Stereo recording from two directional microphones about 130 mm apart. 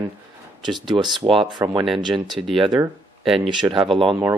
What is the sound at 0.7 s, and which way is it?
Speech, 35° right (ahead or behind).